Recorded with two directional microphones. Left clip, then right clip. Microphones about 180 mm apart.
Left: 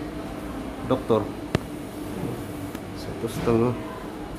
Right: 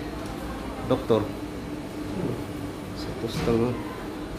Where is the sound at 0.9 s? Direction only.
5° left (ahead or behind).